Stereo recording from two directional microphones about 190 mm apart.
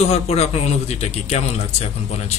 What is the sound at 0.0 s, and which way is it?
A man's voice, 35° left (ahead or behind).